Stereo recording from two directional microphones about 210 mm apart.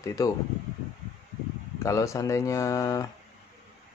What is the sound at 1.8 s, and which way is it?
Speech, 15° left (ahead or behind).